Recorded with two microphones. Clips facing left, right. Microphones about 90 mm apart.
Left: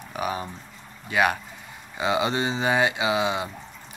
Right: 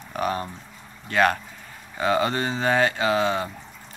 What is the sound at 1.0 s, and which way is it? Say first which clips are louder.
Speech: right 2 dB; 10° left (ahead or behind).